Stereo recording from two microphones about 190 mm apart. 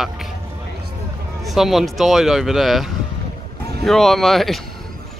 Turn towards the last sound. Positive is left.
turn(degrees=0)  # may be behind; listen again after turning